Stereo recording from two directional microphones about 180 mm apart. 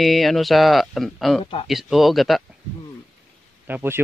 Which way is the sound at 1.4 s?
30° left (ahead or behind).